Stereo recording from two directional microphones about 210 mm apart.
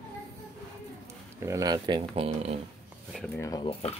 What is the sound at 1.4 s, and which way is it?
Speech, 15° right (ahead or behind).